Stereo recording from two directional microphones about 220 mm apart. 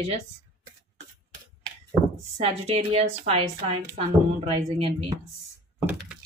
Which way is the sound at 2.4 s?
30° right (ahead or behind).